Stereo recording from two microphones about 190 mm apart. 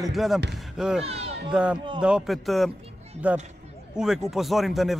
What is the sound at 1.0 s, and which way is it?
Speech, 30° right (ahead or behind).